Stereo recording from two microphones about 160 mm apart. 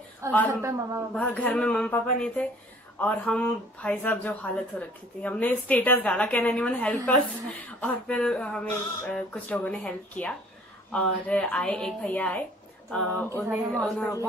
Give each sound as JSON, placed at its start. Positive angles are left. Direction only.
{"t": 0.2, "sound": "a man's voice", "side_deg": -20}
{"t": 1.1, "sound": "speech", "side_deg": 10}
{"t": 12.9, "sound": "a sound", "side_deg": 5}
{"t": 13.7, "sound": "speech", "side_deg": 5}